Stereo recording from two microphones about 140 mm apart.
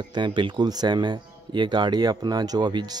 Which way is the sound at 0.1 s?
35° right (ahead or behind).